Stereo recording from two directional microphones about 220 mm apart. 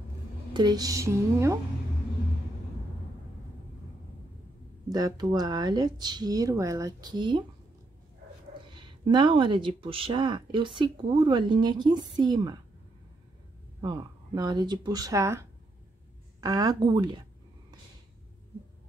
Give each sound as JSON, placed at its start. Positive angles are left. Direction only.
{"t": 0.5, "sound": "speech", "side_deg": -20}
{"t": 4.9, "sound": "speech", "side_deg": -15}
{"t": 8.7, "sound": "speech", "side_deg": -20}
{"t": 13.7, "sound": "speech", "side_deg": -20}